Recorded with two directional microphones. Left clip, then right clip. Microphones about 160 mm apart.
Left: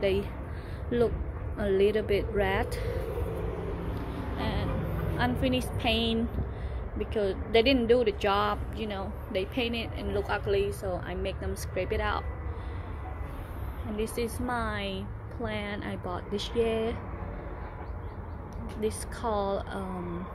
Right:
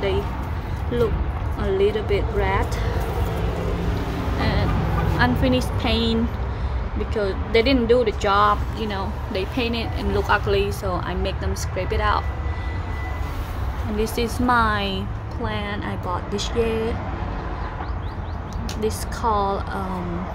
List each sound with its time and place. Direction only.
0.9 s speech: 20° left (ahead or behind)
4.4 s vehicle: 5° left (ahead or behind)
5.1 s speech: centre (ahead or behind)
7.2 s speech: 5° left (ahead or behind)
10.1 s speech: 5° right (ahead or behind)
13.9 s speech: 5° right (ahead or behind)
15.4 s speech: 10° left (ahead or behind)
18.8 s speech: 5° left (ahead or behind)